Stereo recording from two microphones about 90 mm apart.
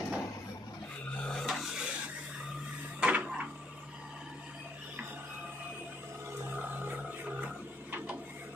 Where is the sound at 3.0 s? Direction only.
15° right (ahead or behind).